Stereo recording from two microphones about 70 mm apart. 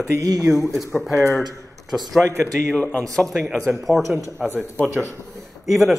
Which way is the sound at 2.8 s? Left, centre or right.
Left.